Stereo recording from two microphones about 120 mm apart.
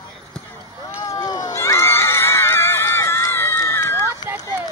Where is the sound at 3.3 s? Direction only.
20° left (ahead or behind).